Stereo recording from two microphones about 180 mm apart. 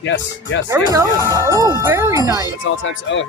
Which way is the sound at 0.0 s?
85° left.